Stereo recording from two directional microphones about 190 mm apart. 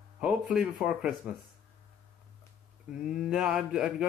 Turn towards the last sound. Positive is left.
turn(degrees=-5)  # may be behind; listen again after turning